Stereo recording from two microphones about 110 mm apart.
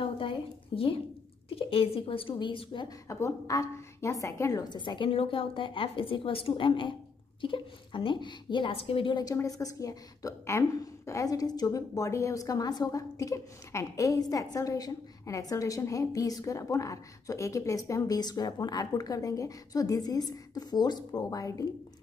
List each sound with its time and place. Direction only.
0.0 s a sound: 55° left (ahead or behind)
1.5 s a woman's voice: 60° left (ahead or behind)
3.1 s a woman's voice: 25° left (ahead or behind); by 9.2 s 50° left (ahead or behind)
9.2 s a woman's voice: 30° left (ahead or behind)